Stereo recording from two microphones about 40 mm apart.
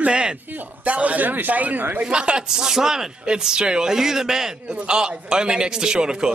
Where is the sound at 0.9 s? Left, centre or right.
Right.